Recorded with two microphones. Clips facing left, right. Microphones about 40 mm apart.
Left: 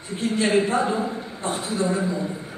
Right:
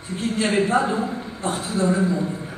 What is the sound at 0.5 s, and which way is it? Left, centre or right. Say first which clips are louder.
A man's voice: right 3 dB; centre.